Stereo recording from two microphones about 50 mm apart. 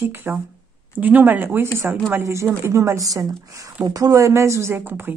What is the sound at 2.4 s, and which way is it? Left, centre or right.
Speech, right.